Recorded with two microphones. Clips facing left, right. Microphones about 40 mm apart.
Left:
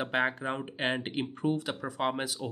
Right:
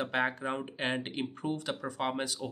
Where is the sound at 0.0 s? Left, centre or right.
Centre.